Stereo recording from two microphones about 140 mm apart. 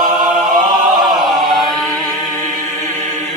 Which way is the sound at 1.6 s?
Centre (ahead or behind).